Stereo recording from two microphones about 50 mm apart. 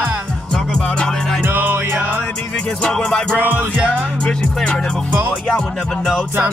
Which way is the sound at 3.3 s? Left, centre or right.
Right.